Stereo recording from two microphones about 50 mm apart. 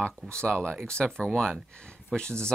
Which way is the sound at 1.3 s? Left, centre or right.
Centre.